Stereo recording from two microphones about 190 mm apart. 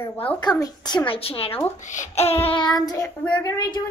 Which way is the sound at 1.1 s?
30° left (ahead or behind).